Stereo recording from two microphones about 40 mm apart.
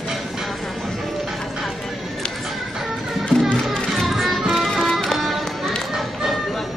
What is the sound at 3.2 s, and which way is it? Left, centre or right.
Music, left.